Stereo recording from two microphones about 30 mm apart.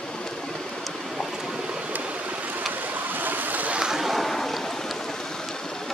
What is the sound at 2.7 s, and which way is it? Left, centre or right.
Boat, right.